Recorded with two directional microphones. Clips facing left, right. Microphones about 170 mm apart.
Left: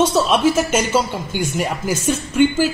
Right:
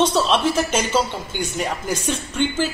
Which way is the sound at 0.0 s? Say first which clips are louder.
Left 3 dB; 10° left (ahead or behind).